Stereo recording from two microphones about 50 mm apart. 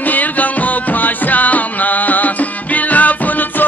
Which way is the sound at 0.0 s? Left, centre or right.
Left.